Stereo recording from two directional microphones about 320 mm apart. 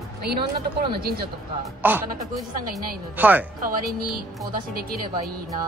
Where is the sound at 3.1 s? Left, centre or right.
Centre.